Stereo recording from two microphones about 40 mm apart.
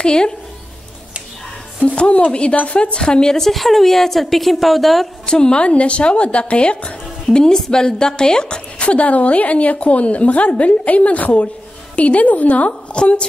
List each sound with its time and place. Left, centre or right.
0.0 s speech: left
1.9 s a woman's voice: left
3.1 s speech: centre
3.4 s speech: centre
5.2 s speech: left
7.2 s speech: centre
8.8 s a woman's voice: left
12.9 s a woman's voice: left